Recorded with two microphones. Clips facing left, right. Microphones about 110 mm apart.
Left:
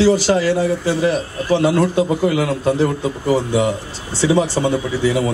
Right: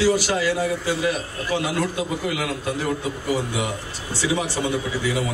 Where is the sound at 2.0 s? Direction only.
35° left (ahead or behind).